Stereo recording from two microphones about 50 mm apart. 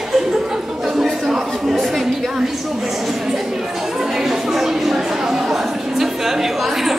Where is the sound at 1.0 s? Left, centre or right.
Centre.